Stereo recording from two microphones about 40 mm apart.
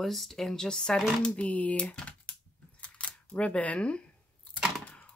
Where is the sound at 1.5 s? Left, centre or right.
Left.